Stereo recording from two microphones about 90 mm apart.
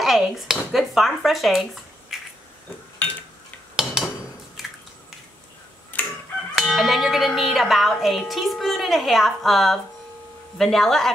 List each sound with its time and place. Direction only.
0.0 s dishes: 5° right (ahead or behind)
3.8 s a sound: 5° right (ahead or behind)
4.6 s squish: 5° right (ahead or behind)
5.9 s crowing: 20° left (ahead or behind)
6.5 s music: 5° right (ahead or behind)
10.6 s speech: 5° left (ahead or behind)